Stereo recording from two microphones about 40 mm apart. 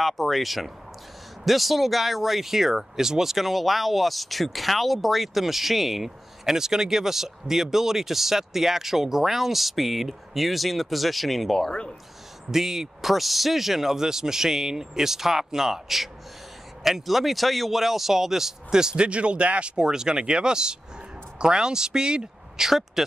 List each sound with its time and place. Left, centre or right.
0.0 s speech: centre
12.4 s speech: centre
19.0 s speech: right
22.7 s speech: centre